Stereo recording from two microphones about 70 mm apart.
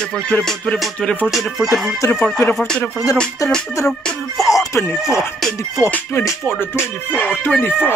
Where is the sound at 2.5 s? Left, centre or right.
Centre.